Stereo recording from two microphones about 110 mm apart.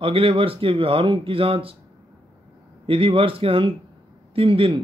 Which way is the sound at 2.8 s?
55° right (ahead or behind).